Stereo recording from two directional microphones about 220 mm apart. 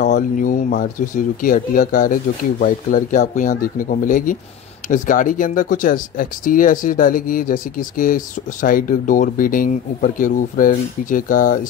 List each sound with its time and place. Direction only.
0.0 s speech: 35° left (ahead or behind)